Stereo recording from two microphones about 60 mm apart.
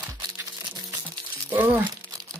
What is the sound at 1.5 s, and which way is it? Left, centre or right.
Speech, right.